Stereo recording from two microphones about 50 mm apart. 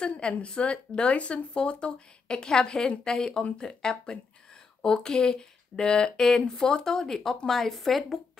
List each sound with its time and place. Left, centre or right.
0.2 s speech: left; by 8.2 s centre